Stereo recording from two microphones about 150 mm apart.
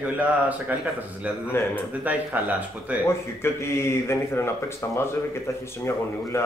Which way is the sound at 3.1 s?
15° left (ahead or behind).